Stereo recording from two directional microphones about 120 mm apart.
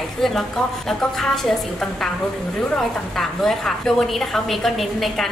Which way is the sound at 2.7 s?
Centre (ahead or behind).